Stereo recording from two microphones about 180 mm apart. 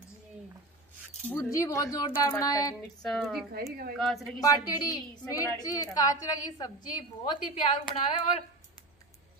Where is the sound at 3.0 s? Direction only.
Centre (ahead or behind).